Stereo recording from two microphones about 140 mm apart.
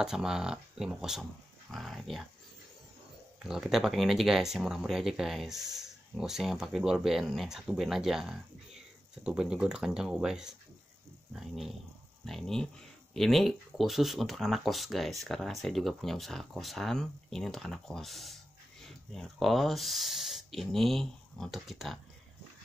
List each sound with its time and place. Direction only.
0.0 s speech: 5° right (ahead or behind)
3.4 s speech: centre (ahead or behind)